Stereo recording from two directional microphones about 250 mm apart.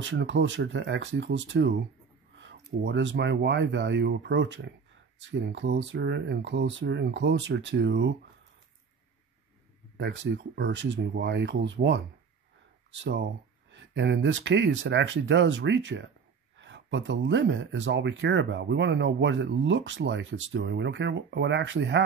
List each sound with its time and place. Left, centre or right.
0.0 s speech: right
9.9 s speech: right